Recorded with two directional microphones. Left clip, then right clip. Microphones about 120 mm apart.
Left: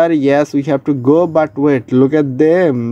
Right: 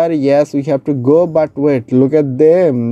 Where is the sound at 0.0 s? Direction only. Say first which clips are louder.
Even; 30° right (ahead or behind).